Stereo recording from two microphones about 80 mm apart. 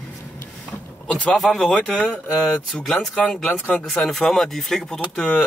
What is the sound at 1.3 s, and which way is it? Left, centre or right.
Speech, centre.